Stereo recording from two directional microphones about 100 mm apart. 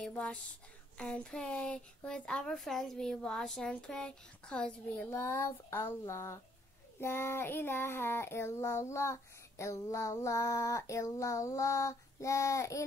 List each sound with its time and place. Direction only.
0.0 s speech: 10° left (ahead or behind)
5.1 s child singing: 25° left (ahead or behind)